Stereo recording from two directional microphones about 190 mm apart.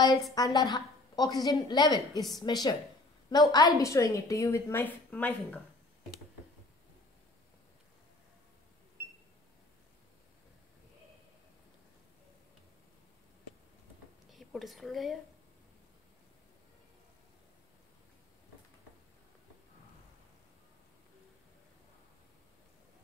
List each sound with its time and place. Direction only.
0.0 s a woman's voice: 20° left (ahead or behind)
14.3 s speech: centre (ahead or behind)